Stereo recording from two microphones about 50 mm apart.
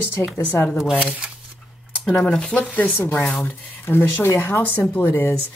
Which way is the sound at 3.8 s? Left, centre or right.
Left.